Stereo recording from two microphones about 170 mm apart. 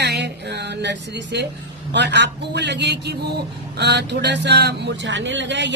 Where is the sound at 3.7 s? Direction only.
85° right.